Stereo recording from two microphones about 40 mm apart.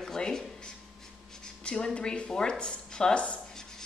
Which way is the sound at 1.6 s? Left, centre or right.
Left.